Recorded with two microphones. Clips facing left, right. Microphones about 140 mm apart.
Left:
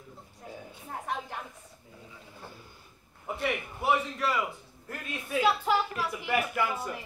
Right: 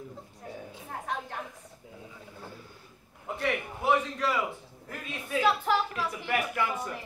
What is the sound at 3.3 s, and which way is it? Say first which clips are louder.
A man's voice: right 1 dB; 5° left (ahead or behind).